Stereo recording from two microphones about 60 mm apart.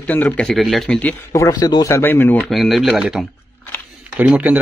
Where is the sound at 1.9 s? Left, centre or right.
Left.